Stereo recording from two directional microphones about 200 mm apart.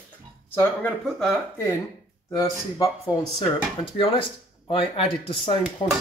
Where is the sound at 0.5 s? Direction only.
5° left (ahead or behind).